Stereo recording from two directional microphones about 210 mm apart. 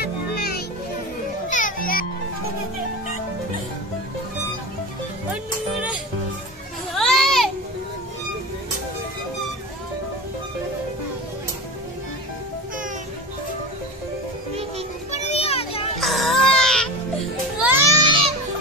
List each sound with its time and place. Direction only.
0.0 s music: 50° left (ahead or behind)
7.0 s a sound: centre (ahead or behind)
15.0 s children playing: 30° left (ahead or behind)
16.0 s music: centre (ahead or behind)
17.6 s music: 10° right (ahead or behind)